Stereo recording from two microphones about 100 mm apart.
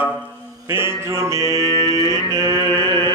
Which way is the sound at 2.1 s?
45° right (ahead or behind).